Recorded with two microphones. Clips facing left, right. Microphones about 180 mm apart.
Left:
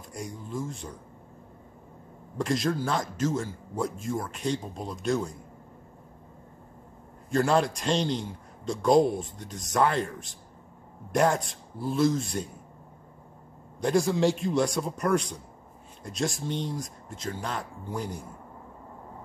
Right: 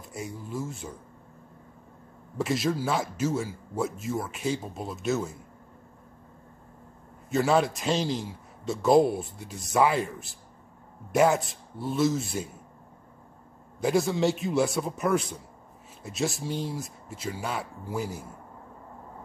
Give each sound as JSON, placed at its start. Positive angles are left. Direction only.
{"t": 0.1, "sound": "speech", "side_deg": -5}
{"t": 2.3, "sound": "a man's voice", "side_deg": -5}
{"t": 7.2, "sound": "a man's voice", "side_deg": -5}
{"t": 13.7, "sound": "a man's voice", "side_deg": -5}